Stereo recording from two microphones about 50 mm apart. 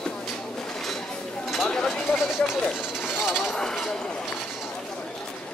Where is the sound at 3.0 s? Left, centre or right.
Centre.